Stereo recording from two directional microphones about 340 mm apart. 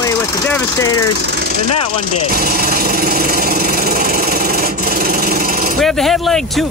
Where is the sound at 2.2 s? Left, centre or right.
Right.